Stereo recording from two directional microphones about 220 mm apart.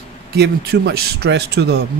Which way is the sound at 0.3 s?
50° right (ahead or behind).